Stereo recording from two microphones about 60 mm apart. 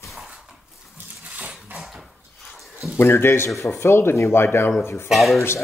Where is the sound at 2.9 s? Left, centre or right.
Left.